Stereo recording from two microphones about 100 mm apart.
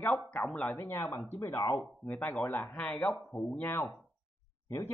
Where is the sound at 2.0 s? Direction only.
10° left (ahead or behind).